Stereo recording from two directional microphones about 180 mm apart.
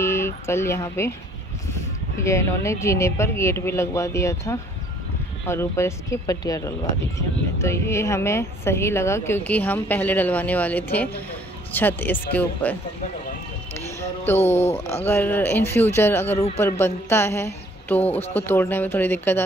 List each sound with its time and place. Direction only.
0.0 s speech: 15° left (ahead or behind)
2.2 s speech: 15° left (ahead or behind)
13.7 s music: 10° left (ahead or behind)
15.0 s speech: 10° left (ahead or behind)